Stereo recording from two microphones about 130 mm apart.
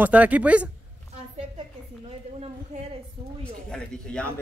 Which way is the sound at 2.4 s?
55° right (ahead or behind).